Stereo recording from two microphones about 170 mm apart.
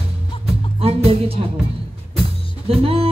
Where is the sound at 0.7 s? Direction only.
35° right (ahead or behind).